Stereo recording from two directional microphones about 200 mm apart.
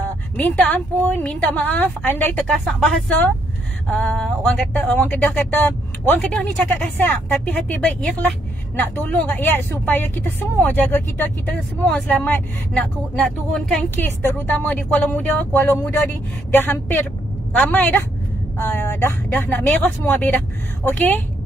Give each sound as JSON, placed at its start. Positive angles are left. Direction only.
{"t": 0.4, "sound": "a woman's voice", "side_deg": 10}